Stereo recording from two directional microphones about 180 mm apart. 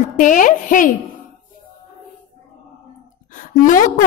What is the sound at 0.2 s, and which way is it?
Speech, 45° left (ahead or behind).